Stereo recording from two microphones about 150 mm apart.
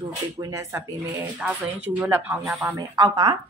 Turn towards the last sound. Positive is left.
turn(degrees=-25)  # may be behind; listen again after turning